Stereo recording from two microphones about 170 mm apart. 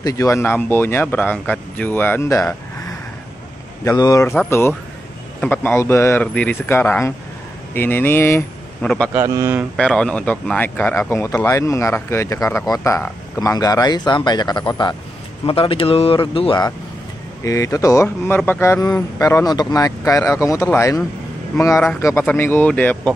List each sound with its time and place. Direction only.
0.0 s speech: 20° left (ahead or behind)
3.8 s a man's voice: 20° left (ahead or behind); by 9.1 s 5° left (ahead or behind)
9.1 s a man's voice: 15° right (ahead or behind)
9.8 s a man's voice: 5° left (ahead or behind)